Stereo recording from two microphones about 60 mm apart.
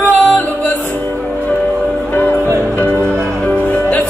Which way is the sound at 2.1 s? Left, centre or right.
Left.